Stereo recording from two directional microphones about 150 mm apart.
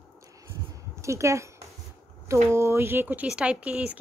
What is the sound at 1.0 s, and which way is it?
A woman's voice, 20° right (ahead or behind).